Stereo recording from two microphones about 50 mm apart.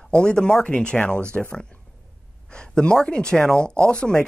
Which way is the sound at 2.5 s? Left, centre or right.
Centre.